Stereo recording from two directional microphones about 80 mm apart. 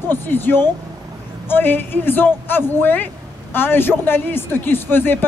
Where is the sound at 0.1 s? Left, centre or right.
Left.